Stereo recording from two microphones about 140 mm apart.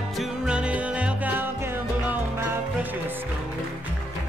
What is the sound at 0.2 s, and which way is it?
Music, 5° right (ahead or behind).